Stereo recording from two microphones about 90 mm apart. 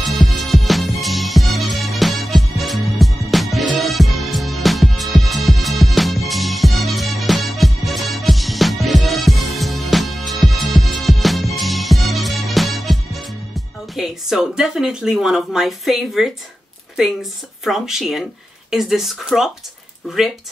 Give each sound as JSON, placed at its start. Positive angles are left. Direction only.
{"t": 0.0, "sound": "music", "side_deg": 0}
{"t": 13.9, "sound": "speech", "side_deg": -5}
{"t": 17.6, "sound": "speech", "side_deg": -5}